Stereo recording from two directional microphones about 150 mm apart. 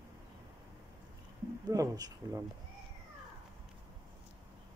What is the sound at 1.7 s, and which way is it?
Speech, 20° right (ahead or behind).